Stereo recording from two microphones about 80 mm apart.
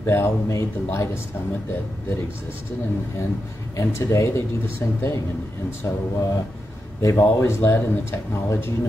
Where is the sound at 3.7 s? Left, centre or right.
Left.